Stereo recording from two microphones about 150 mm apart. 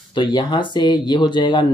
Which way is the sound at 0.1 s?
30° left (ahead or behind).